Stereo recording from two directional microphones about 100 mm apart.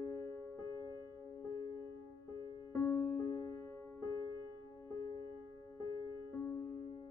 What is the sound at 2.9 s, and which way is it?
Music, 25° left (ahead or behind).